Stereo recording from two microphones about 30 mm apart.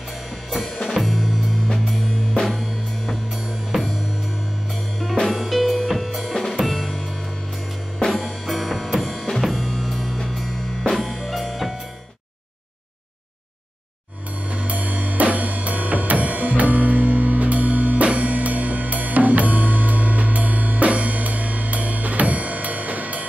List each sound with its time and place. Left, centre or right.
0.5 s drum kit: centre
0.7 s music: centre
5.2 s drum kit: centre
6.3 s drum kit: centre
6.6 s music: centre
8.1 s drum kit: centre
10.1 s music: centre
11.0 s drum kit: centre
11.2 s music: centre
14.5 s drum kit: right